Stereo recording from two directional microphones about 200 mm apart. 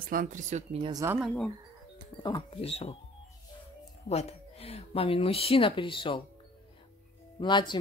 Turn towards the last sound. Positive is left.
turn(degrees=25)  # may be behind; listen again after turning